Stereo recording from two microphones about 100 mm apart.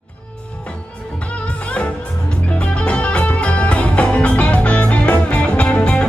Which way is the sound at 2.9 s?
10° left (ahead or behind).